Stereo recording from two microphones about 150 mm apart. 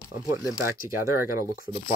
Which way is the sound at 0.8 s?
20° right (ahead or behind).